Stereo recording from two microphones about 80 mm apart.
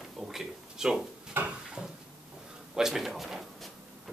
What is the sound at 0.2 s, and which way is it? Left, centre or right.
Speech, centre.